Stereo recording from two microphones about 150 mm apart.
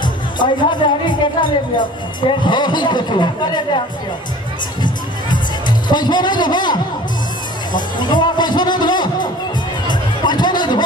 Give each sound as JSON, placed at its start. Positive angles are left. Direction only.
{"t": 0.0, "sound": "speech", "side_deg": 30}
{"t": 4.8, "sound": "music", "side_deg": 30}
{"t": 7.7, "sound": "speech", "side_deg": 30}
{"t": 9.8, "sound": "music", "side_deg": 30}